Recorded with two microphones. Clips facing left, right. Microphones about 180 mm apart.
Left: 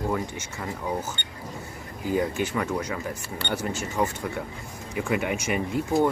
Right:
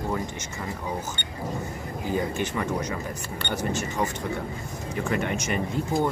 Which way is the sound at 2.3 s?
10° left (ahead or behind).